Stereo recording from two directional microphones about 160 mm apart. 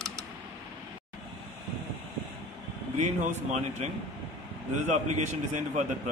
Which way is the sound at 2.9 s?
45° right (ahead or behind).